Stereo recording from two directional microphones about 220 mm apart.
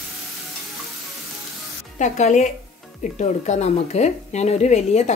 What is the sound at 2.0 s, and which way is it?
Speech, 35° left (ahead or behind).